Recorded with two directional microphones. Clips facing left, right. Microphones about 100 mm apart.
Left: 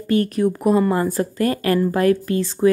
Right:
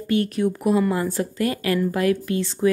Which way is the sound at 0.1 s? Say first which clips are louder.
Left 3 dB; 40° left (ahead or behind).